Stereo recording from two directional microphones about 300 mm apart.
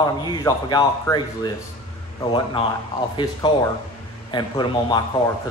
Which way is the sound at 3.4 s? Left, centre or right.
Centre.